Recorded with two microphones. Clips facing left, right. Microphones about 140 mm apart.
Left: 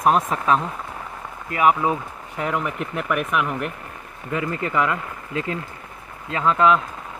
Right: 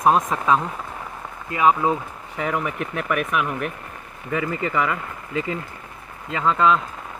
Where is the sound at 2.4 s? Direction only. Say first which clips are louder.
Even; centre (ahead or behind).